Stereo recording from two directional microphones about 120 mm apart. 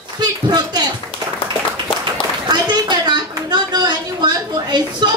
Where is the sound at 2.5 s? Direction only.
35° right (ahead or behind).